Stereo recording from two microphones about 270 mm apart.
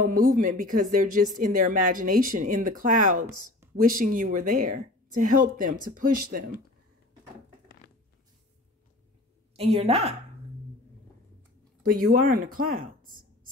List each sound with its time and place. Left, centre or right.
0.0 s speech: right
9.6 s speech: right
11.8 s speech: right